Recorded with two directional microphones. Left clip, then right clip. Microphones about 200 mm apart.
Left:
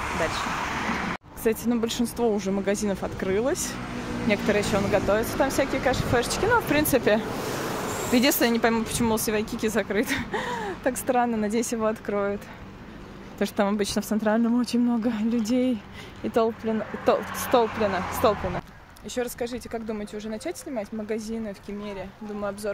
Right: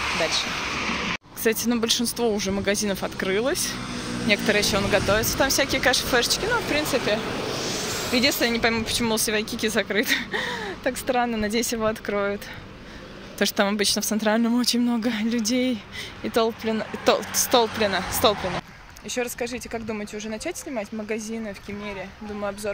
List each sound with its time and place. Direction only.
1.4 s speech: 5° left (ahead or behind)
6.5 s a sound: 35° left (ahead or behind)
8.1 s speech: 35° left (ahead or behind); by 12.4 s 5° left (ahead or behind)
13.4 s speech: 5° left (ahead or behind)
22.4 s speech: centre (ahead or behind)